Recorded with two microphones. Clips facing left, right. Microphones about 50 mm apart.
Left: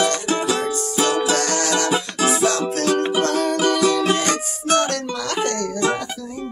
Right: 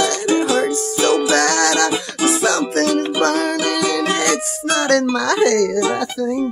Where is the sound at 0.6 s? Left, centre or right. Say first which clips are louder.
Right 4 dB; right.